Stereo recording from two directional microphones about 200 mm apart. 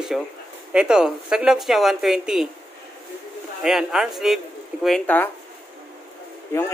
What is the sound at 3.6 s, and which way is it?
Speech, centre (ahead or behind).